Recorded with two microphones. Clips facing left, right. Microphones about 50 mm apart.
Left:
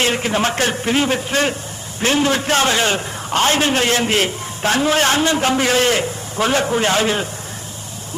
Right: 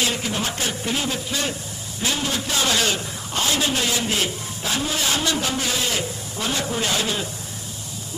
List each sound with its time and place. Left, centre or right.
0.0 s a man's voice: left
2.7 s a man's voice: left
3.3 s a man's voice: left
5.2 s a man's voice: left
5.6 s a man's voice: left
6.6 s a man's voice: left